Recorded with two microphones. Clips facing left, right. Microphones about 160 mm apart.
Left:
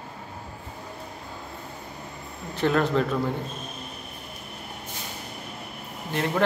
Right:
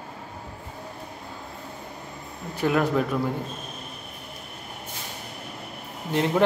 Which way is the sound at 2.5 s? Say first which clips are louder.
Even; 10° right (ahead or behind).